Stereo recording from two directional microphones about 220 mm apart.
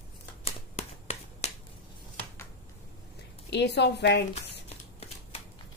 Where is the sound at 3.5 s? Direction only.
50° left (ahead or behind).